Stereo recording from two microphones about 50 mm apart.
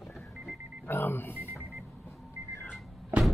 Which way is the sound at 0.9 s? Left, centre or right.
Left.